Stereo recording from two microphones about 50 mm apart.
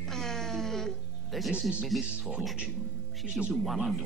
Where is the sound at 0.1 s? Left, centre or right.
Centre.